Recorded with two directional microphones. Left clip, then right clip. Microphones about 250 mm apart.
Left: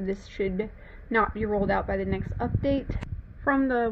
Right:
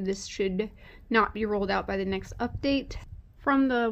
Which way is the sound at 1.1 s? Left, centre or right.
Right.